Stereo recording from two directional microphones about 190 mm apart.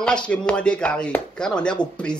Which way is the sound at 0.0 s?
5° left (ahead or behind).